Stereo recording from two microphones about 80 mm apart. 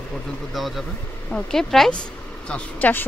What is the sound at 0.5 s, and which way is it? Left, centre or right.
Speech, centre.